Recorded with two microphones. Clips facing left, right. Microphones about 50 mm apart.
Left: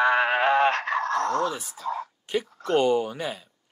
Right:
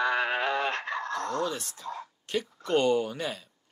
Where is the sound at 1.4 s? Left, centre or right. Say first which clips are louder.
Left 4 dB; centre.